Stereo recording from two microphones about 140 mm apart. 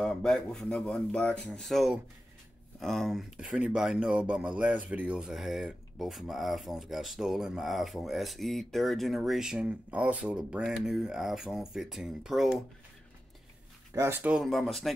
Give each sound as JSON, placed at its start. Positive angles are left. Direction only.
{"t": 0.0, "sound": "speech", "side_deg": 5}
{"t": 13.9, "sound": "speech", "side_deg": -15}
{"t": 14.3, "sound": "speech", "side_deg": 0}